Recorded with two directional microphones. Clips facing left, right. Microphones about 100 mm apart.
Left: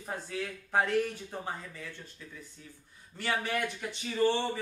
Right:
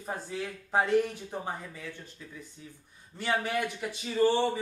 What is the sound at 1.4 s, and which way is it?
A woman's voice, 10° right (ahead or behind).